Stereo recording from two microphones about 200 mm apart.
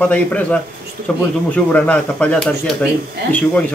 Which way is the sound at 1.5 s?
5° left (ahead or behind).